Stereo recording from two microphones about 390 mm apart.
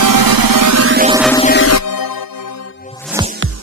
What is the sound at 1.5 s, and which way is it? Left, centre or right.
Music, left.